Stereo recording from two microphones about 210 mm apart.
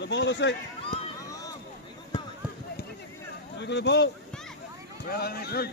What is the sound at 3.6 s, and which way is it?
Speech, 55° left (ahead or behind).